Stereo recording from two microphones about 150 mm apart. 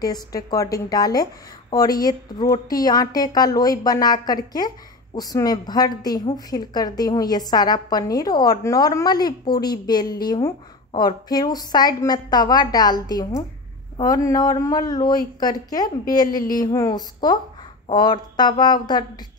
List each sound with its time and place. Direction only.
0.0 s a woman's voice: 25° left (ahead or behind)